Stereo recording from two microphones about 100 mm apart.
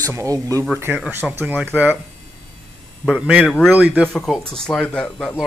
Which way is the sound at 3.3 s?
5° left (ahead or behind).